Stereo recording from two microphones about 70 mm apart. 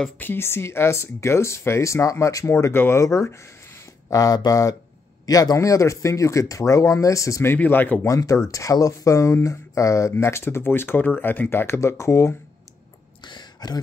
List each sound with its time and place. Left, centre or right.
0.2 s speech: left
3.0 s speech: left
4.1 s speech: left
7.5 s speech: left
8.0 s speech: left
13.2 s a sound: left